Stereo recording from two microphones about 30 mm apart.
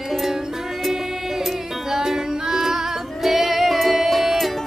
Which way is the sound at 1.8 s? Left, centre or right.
Centre.